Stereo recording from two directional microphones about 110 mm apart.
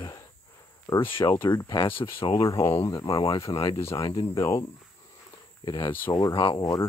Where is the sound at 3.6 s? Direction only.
30° left (ahead or behind).